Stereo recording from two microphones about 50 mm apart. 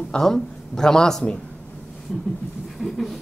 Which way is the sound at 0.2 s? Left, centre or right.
Centre.